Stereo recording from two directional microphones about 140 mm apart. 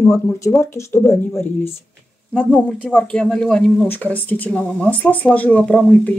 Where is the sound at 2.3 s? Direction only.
5° left (ahead or behind).